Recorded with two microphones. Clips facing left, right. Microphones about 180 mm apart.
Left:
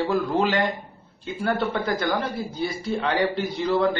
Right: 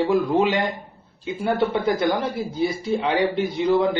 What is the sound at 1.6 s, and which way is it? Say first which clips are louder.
Speech: right 4 dB; 20° right (ahead or behind).